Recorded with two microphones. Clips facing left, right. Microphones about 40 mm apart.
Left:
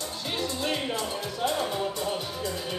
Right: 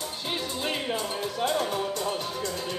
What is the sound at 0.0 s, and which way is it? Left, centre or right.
Music, right.